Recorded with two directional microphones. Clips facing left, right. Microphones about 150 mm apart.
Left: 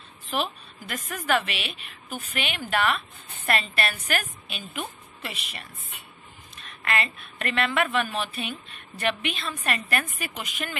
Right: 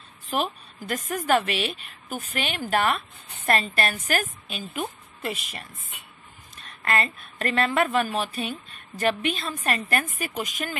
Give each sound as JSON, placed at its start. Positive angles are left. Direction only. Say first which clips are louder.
{"t": 0.4, "sound": "a woman's voice", "louder": "right 2 dB", "side_deg": -45}
{"t": 6.8, "sound": "a woman's voice", "louder": "right 2 dB", "side_deg": -40}